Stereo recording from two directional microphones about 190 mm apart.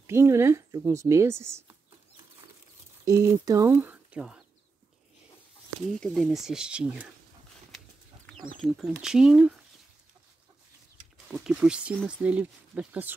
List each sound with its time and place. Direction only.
0.0 s speech: 15° right (ahead or behind)
3.1 s speech: 15° right (ahead or behind)
5.9 s speech: centre (ahead or behind)
8.3 s speech: centre (ahead or behind)
11.2 s speech: 5° right (ahead or behind)